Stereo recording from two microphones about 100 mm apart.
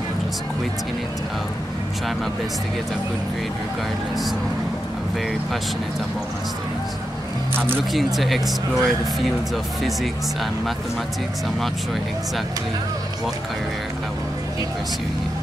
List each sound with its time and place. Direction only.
7.5 s speech: 20° right (ahead or behind)
7.9 s speech: centre (ahead or behind)